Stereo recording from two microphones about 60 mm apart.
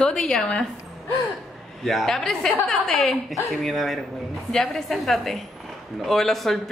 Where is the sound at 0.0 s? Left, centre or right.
Centre.